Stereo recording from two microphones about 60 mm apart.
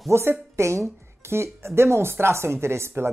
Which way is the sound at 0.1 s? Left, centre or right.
Right.